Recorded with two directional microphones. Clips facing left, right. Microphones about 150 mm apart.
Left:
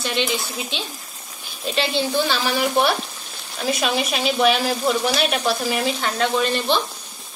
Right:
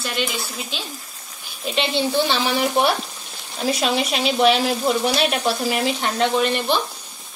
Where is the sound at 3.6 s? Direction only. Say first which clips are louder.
Right 1 dB; 25° right (ahead or behind).